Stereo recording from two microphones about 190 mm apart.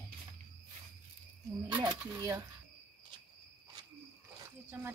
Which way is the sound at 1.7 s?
25° right (ahead or behind).